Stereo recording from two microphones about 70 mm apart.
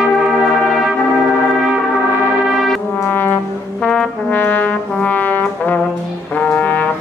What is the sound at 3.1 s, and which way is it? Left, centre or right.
Brass instrument, left.